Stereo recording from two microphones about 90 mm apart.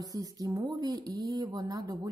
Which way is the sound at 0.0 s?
40° right (ahead or behind).